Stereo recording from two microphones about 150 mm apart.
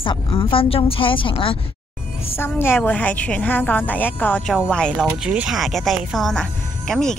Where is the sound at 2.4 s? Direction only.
15° left (ahead or behind).